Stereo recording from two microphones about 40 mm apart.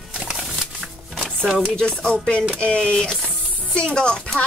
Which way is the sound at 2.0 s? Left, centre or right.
Left.